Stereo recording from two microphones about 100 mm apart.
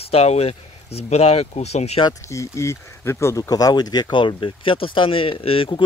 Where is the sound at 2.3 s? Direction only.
30° left (ahead or behind).